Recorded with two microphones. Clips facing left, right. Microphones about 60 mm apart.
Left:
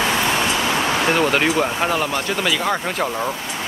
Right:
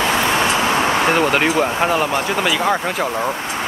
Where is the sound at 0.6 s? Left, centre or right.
Right.